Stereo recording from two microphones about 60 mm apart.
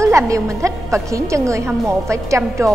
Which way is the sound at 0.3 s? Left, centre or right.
Right.